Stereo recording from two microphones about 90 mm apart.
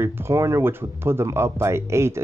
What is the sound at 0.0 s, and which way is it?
Speech, 30° right (ahead or behind).